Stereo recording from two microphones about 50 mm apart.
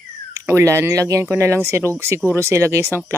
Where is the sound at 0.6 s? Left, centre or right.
Right.